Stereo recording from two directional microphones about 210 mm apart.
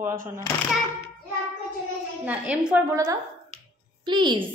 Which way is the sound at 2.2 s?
5° right (ahead or behind).